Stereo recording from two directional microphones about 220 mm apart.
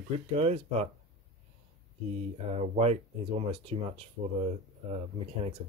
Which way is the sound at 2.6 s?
30° right (ahead or behind).